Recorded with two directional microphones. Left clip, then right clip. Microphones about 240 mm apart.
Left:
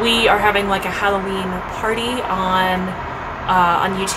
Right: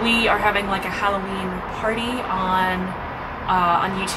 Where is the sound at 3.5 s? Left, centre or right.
Centre.